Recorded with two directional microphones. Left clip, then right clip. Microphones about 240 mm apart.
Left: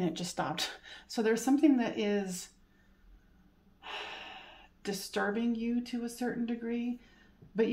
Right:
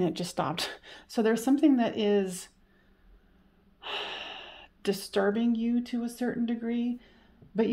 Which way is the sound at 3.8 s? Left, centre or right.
Right.